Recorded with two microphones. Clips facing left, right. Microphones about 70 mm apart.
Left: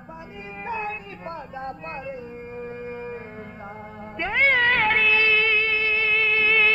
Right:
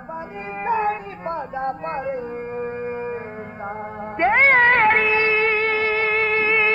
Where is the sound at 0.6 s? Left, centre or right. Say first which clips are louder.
Right 9 dB; right.